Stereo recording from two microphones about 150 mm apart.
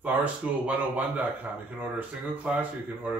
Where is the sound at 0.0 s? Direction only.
10° right (ahead or behind).